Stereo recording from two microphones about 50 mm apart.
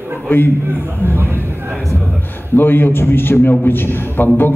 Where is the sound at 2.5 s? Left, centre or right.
Left.